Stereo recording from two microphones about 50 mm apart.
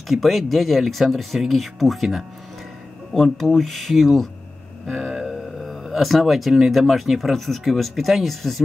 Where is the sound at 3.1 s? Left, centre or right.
Centre.